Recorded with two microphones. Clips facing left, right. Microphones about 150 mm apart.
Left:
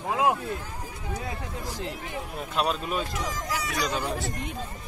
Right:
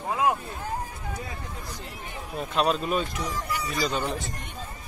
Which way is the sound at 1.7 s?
90° left.